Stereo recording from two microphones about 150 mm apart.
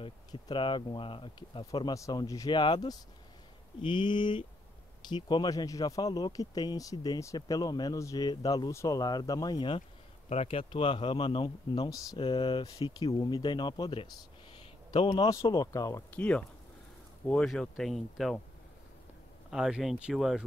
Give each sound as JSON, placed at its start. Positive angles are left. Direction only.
{"t": 0.0, "sound": "speech", "side_deg": 30}
{"t": 10.3, "sound": "speech", "side_deg": 40}
{"t": 16.2, "sound": "speech", "side_deg": 10}
{"t": 19.5, "sound": "speech", "side_deg": -5}